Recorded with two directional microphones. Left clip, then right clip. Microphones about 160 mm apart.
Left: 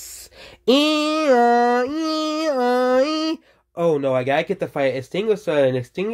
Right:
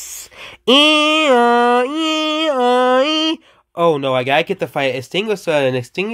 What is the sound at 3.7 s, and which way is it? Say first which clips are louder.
Speech: right 4 dB; 30° right (ahead or behind).